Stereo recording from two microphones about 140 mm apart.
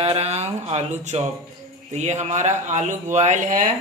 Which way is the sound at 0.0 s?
45° right (ahead or behind).